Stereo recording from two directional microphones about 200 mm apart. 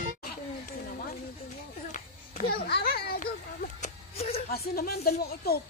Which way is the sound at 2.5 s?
55° left (ahead or behind).